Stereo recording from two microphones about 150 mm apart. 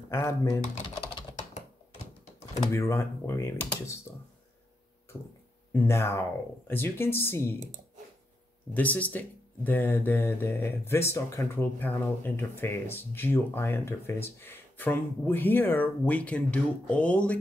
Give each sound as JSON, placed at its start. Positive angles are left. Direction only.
{"t": 0.1, "sound": "speech", "side_deg": 20}
{"t": 2.7, "sound": "speech", "side_deg": 20}
{"t": 5.1, "sound": "speech", "side_deg": 15}
{"t": 8.7, "sound": "speech", "side_deg": 10}